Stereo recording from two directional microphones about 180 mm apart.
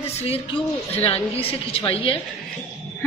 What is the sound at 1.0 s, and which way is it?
A woman's voice, 30° left (ahead or behind).